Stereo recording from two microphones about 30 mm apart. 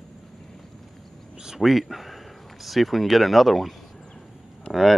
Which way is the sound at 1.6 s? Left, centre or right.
Centre.